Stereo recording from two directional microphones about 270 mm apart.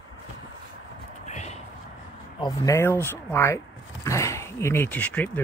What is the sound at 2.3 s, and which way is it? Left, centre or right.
Speech, centre.